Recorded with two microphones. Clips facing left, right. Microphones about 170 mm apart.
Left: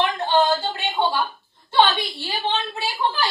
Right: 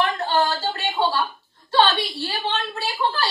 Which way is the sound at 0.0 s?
20° left (ahead or behind).